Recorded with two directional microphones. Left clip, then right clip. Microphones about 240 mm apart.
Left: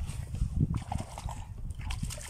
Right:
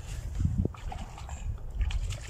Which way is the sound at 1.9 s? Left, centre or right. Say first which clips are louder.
Left 2 dB; left.